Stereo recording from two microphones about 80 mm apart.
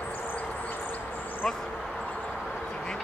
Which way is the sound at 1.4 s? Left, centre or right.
Centre.